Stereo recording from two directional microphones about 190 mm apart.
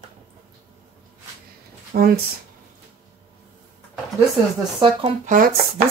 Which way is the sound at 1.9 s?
50° right (ahead or behind).